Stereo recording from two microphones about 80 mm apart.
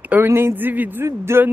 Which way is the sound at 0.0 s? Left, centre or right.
Right.